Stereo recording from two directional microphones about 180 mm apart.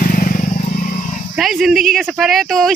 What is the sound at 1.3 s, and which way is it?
Speech, centre (ahead or behind).